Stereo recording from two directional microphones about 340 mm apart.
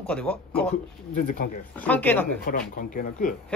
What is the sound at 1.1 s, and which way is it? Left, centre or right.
Speech, left.